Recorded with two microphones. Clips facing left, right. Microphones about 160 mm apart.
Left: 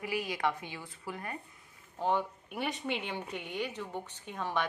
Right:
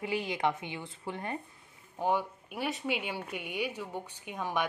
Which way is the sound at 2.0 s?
5° right (ahead or behind).